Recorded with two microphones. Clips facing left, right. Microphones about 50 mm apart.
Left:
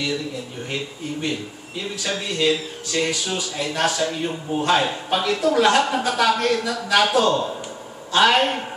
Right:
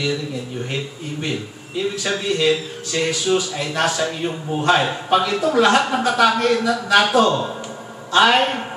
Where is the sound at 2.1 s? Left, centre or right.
Centre.